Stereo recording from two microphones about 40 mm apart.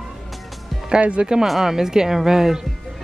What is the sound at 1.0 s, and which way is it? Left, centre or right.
Speech, right.